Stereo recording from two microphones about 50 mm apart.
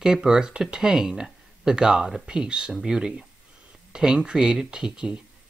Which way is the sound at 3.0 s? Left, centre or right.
Centre.